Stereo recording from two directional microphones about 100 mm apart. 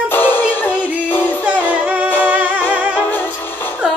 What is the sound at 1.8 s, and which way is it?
Music, 15° right (ahead or behind).